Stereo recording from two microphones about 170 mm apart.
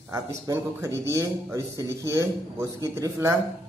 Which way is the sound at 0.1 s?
15° right (ahead or behind).